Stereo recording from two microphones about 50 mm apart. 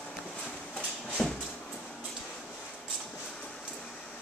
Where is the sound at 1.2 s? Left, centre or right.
Centre.